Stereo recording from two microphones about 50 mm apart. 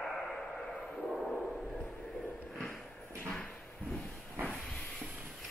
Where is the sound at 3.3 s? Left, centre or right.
Centre.